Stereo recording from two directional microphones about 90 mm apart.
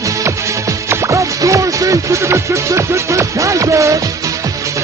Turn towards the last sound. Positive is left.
turn(degrees=-35)  # may be behind; listen again after turning